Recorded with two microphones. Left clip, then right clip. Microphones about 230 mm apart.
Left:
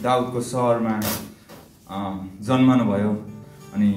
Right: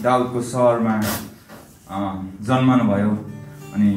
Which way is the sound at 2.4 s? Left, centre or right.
Left.